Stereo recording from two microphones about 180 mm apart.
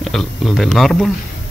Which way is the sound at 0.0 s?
Centre (ahead or behind).